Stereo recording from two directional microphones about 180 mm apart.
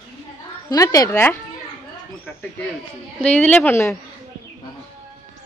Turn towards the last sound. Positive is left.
turn(degrees=10)  # may be behind; listen again after turning